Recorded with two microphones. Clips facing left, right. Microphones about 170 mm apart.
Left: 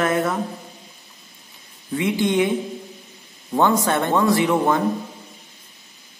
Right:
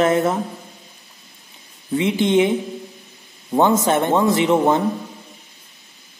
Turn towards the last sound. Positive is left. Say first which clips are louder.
# right 2 dB
turn(degrees=-20)  # may be behind; listen again after turning